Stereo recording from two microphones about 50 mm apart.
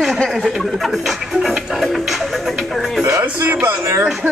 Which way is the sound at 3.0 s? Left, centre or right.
Right.